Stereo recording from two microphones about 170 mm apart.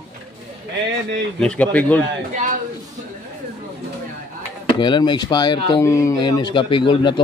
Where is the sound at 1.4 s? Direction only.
5° left (ahead or behind).